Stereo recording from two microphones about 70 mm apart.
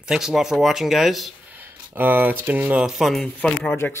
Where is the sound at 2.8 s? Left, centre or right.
Centre.